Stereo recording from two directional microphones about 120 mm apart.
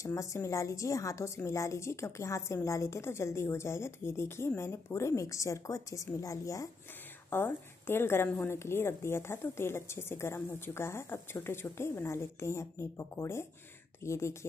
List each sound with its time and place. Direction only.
0.0 s a woman's voice: 25° left (ahead or behind)